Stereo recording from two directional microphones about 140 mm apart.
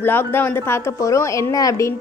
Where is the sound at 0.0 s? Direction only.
15° left (ahead or behind).